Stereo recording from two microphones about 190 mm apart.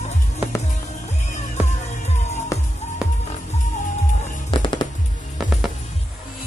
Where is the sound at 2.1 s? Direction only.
35° left (ahead or behind).